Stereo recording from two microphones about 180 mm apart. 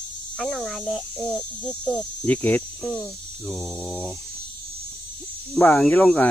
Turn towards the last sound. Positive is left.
turn(degrees=5)  # may be behind; listen again after turning